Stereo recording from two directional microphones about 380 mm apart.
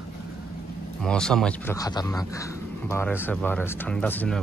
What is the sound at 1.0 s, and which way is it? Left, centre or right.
Speech, centre.